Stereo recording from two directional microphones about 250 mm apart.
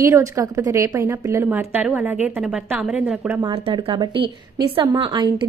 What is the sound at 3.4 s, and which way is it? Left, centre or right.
A woman's voice, centre.